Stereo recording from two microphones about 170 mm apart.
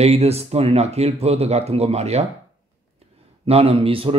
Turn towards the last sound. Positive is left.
turn(degrees=-30)  # may be behind; listen again after turning